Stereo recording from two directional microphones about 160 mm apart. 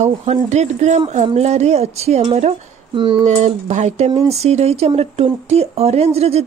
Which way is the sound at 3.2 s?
45° right (ahead or behind).